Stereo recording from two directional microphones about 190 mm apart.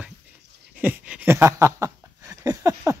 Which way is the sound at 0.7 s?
10° right (ahead or behind).